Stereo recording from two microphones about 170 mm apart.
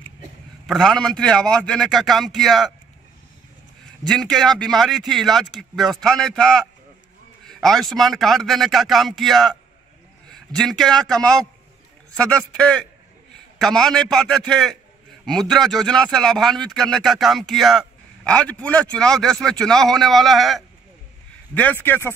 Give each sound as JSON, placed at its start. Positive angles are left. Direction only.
{"t": 0.7, "sound": "speech", "side_deg": 0}
{"t": 3.8, "sound": "speech", "side_deg": 5}